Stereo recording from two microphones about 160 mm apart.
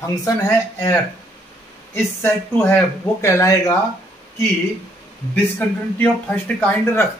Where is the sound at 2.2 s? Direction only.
15° left (ahead or behind).